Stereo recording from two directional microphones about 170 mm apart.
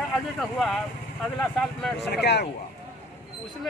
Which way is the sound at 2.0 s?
75° left (ahead or behind).